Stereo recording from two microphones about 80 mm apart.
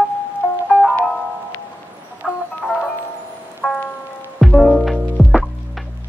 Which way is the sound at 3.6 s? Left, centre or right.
Centre.